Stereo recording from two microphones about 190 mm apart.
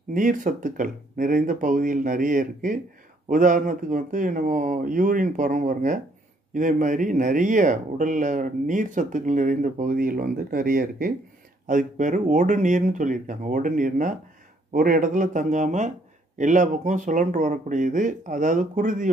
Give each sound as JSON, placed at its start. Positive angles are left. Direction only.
{"t": 0.1, "sound": "speech", "side_deg": -45}